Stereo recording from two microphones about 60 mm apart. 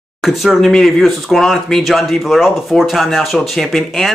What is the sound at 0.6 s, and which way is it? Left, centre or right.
Speech, centre.